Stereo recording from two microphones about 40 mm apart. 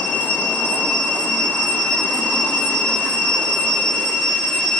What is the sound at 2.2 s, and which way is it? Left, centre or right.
Jet engine, left.